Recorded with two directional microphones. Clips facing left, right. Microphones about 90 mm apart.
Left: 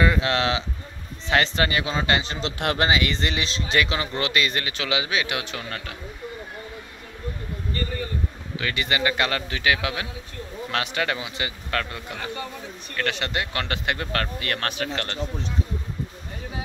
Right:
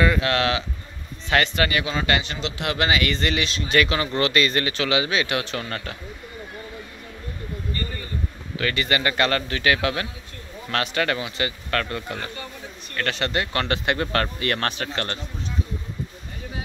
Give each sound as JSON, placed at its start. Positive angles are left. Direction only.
{"t": 0.0, "sound": "a man's voice", "side_deg": 20}
{"t": 2.6, "sound": "speech", "side_deg": 45}
{"t": 2.9, "sound": "speech", "side_deg": 20}
{"t": 8.5, "sound": "speech", "side_deg": 10}